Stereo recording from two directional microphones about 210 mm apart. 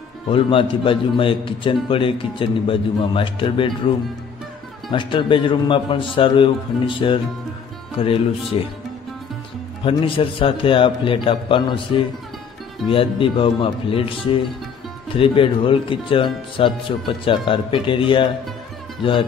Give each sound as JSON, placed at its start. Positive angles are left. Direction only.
{"t": 0.3, "sound": "a man's voice", "side_deg": 25}
{"t": 4.9, "sound": "a man's voice", "side_deg": 25}
{"t": 8.5, "sound": "a man's voice", "side_deg": 25}
{"t": 9.8, "sound": "a man's voice", "side_deg": 25}